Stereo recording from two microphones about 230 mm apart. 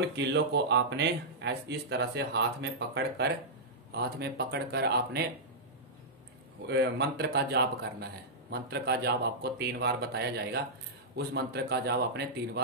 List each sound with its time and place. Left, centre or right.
0.1 s a man's voice: right
6.7 s a man's voice: right